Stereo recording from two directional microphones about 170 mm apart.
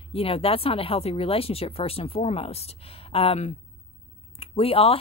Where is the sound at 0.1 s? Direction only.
35° left (ahead or behind).